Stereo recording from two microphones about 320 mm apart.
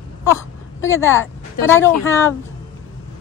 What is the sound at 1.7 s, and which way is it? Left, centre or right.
Speech, centre.